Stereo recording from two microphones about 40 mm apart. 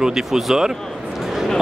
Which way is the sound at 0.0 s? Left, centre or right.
Centre.